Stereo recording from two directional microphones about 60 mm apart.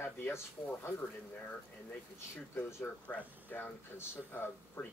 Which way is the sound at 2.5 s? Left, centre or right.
Left.